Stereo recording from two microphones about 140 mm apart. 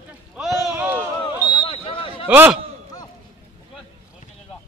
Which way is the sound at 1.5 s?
40° left (ahead or behind).